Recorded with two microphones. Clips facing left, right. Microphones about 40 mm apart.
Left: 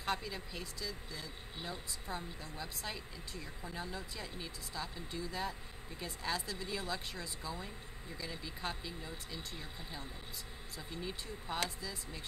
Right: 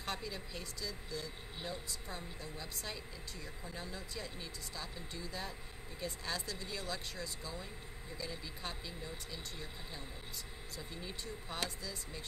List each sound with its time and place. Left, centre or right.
0.0 s speech: centre